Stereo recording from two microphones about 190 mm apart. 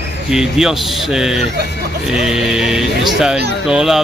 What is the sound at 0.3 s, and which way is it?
Speech, 5° right (ahead or behind).